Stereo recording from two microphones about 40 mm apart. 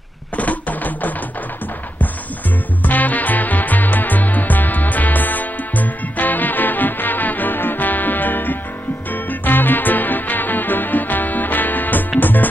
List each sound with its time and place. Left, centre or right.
0.4 s music: left
2.8 s music: left